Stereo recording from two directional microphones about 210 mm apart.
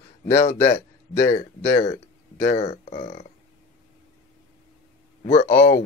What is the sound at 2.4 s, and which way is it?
Speech, 35° left (ahead or behind).